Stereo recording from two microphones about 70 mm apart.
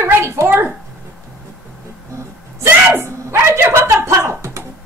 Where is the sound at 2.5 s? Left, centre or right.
Right.